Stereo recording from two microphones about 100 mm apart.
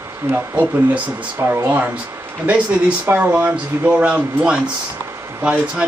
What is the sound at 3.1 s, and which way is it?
Speech, 15° right (ahead or behind).